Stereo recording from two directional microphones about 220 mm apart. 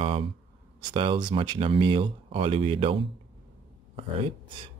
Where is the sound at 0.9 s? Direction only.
20° right (ahead or behind).